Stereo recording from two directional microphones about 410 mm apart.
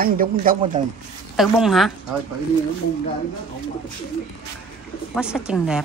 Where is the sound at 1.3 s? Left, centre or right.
Centre.